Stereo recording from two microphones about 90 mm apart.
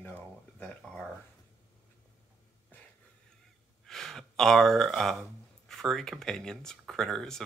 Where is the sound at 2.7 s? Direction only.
20° left (ahead or behind).